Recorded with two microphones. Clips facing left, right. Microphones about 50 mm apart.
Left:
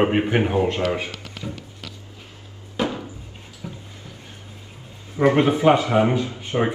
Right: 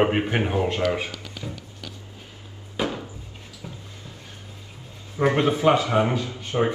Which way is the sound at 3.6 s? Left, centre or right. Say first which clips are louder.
Left 4 dB; centre.